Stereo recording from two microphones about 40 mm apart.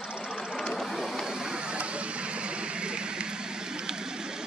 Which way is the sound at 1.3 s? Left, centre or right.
Centre.